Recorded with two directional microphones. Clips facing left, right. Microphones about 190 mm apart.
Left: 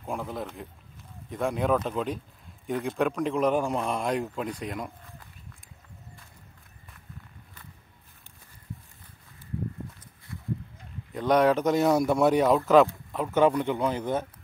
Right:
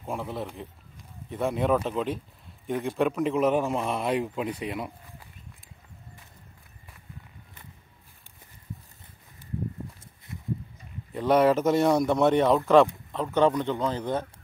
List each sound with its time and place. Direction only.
0.0 s a man's voice: centre (ahead or behind)
10.3 s a sound: 20° right (ahead or behind)
11.1 s a man's voice: 5° right (ahead or behind)